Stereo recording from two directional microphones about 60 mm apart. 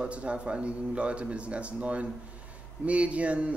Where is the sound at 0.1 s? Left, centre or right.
Centre.